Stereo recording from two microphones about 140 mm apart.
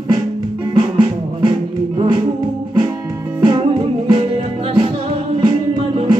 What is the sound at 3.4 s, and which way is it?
Music, 35° right (ahead or behind).